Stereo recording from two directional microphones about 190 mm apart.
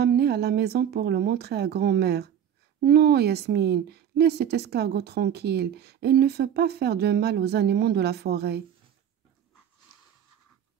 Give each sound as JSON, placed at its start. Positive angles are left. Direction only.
{"t": 0.0, "sound": "a woman's voice", "side_deg": -60}